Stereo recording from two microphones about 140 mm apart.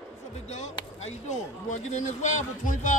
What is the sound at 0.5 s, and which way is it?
Speech, 55° left (ahead or behind).